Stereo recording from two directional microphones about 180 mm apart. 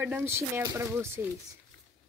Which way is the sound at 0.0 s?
10° right (ahead or behind).